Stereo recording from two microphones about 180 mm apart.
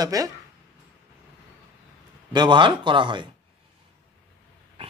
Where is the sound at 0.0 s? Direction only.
20° right (ahead or behind).